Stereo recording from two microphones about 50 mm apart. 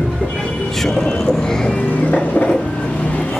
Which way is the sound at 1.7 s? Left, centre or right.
Left.